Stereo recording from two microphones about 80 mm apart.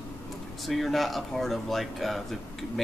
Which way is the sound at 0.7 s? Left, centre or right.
Centre.